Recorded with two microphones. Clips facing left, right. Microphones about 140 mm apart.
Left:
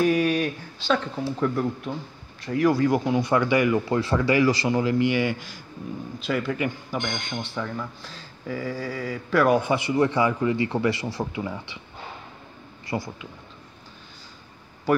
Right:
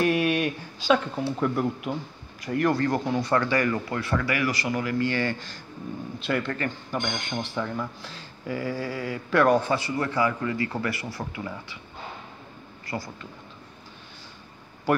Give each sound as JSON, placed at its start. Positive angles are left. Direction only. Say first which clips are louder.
{"t": 0.0, "sound": "speech", "louder": "left 2 dB", "side_deg": -5}
{"t": 2.5, "sound": "speech", "louder": "left 3 dB", "side_deg": 5}
{"t": 4.0, "sound": "a man's voice", "louder": "left 5 dB", "side_deg": 25}
{"t": 6.1, "sound": "speech", "louder": "left 2 dB", "side_deg": 0}
{"t": 9.6, "sound": "a man's voice", "louder": "left 4 dB", "side_deg": 15}
{"t": 12.8, "sound": "speech", "louder": "left 4 dB", "side_deg": 25}
{"t": 14.9, "sound": "speech", "louder": "left 2 dB", "side_deg": 0}